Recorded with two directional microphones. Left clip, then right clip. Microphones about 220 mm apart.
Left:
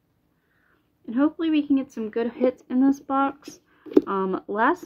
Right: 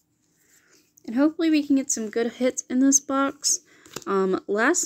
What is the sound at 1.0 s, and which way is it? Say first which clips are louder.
Speech: right 1 dB; 40° right (ahead or behind).